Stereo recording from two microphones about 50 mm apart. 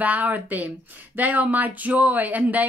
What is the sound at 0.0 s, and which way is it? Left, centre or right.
A woman's voice, right.